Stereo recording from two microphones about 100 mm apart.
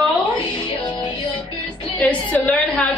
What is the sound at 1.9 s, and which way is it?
Speech, 15° left (ahead or behind).